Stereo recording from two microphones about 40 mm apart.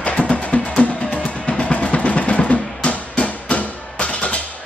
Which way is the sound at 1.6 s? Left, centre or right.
Left.